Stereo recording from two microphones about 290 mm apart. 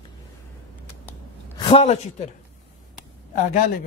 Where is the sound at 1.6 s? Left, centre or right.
Centre.